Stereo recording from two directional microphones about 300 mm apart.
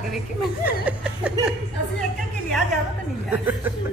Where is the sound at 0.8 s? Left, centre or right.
Centre.